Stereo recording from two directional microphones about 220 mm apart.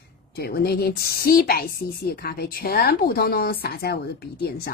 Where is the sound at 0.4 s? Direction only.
45° left (ahead or behind).